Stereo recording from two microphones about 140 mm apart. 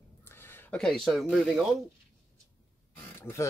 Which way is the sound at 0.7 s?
5° left (ahead or behind).